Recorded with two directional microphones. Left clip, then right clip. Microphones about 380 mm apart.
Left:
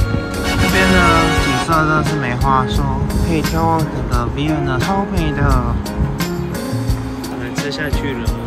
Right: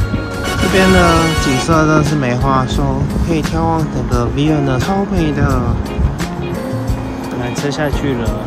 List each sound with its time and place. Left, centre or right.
0.5 s music: centre
3.3 s speech: centre